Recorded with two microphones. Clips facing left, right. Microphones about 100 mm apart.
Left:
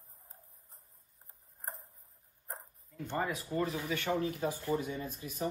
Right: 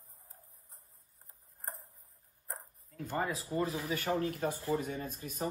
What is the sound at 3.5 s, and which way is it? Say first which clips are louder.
Speech: even; 30° right (ahead or behind).